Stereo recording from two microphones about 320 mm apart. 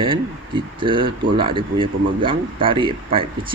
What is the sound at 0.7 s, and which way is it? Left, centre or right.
Speech, centre.